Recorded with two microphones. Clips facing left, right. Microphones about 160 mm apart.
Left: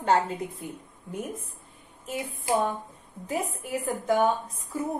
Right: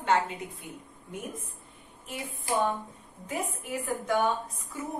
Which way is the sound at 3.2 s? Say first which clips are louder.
Left 3 dB; 35° left (ahead or behind).